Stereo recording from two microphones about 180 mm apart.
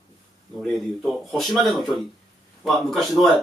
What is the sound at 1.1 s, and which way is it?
A man's voice, centre (ahead or behind).